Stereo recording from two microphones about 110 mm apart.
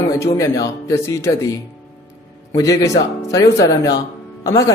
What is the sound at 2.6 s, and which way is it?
Speech, 30° left (ahead or behind).